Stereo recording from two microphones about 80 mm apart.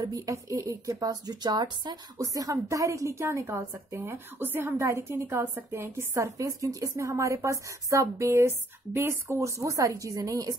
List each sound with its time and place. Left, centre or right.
0.0 s speech: right
2.1 s a woman's voice: right
4.7 s a woman's voice: right